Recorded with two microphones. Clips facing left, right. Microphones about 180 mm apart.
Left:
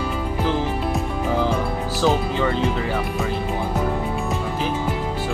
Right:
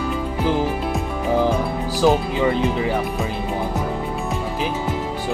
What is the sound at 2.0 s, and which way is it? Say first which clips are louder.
Speech: right 3 dB; 10° right (ahead or behind).